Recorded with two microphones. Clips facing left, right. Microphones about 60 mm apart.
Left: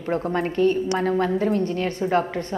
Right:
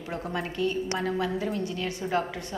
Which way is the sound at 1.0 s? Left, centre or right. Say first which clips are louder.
Left 9 dB; left.